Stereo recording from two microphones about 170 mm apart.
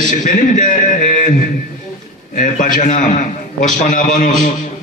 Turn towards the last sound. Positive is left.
turn(degrees=50)  # may be behind; listen again after turning